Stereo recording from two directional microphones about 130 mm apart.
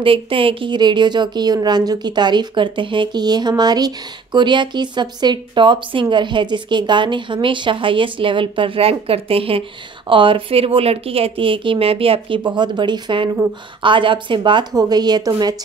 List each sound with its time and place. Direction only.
0.0 s a woman's voice: 45° right (ahead or behind)